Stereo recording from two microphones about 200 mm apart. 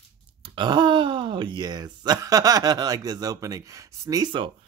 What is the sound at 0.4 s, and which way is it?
Speech, 25° right (ahead or behind).